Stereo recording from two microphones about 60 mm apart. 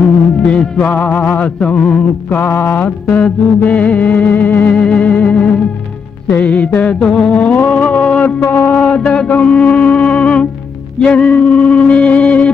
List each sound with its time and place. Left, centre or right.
0.5 s music: left
2.2 s music: left; by 5.6 s centre
6.8 s music: centre; by 8.7 s left
8.7 s music: centre